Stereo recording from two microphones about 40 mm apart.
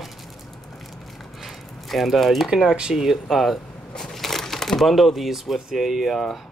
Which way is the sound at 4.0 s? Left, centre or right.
Centre.